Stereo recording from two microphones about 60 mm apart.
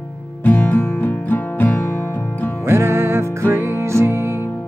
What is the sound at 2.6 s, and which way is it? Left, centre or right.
Music, right.